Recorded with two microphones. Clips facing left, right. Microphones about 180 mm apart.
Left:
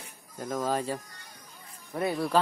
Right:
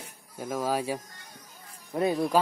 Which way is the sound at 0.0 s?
10° right (ahead or behind).